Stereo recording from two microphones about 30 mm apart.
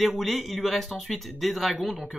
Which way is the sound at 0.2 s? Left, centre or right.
Centre.